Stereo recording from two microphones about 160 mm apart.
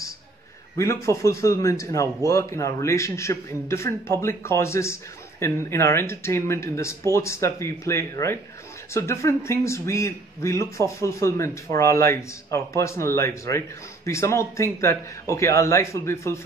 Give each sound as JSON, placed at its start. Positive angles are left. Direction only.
{"t": 0.7, "sound": "a man's voice", "side_deg": 20}